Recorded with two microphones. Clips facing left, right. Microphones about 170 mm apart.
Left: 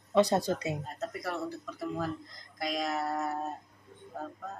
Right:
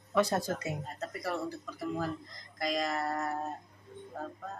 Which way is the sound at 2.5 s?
Centre (ahead or behind).